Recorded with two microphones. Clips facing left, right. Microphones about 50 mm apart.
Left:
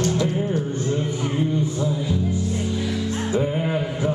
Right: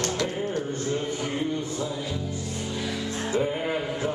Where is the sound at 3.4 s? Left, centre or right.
Centre.